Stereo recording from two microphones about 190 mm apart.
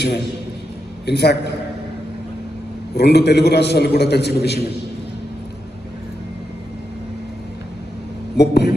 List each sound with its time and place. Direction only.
1.0 s a man's voice: 60° left (ahead or behind)
3.0 s a man's voice: 60° left (ahead or behind)
8.4 s a man's voice: 60° left (ahead or behind)